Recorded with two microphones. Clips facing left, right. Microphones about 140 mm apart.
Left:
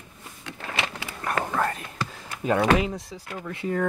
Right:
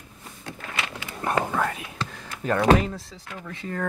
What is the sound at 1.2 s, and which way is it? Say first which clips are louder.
Whispering: right 3 dB; 20° right (ahead or behind).